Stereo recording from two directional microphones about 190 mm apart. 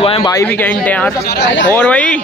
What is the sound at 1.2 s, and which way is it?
Speech, 60° left (ahead or behind).